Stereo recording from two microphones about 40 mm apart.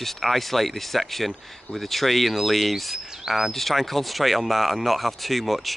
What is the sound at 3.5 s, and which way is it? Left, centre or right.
Speech, centre.